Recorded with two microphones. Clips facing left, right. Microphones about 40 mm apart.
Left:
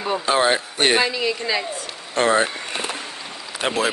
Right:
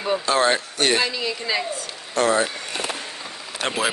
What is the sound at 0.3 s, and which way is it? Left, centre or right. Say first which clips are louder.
Speech: left 2 dB; centre.